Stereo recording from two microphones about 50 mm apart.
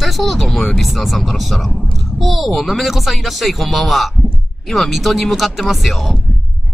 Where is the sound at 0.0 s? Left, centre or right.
Centre.